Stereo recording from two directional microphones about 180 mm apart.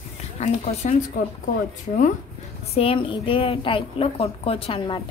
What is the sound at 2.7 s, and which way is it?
A woman's voice, 30° left (ahead or behind).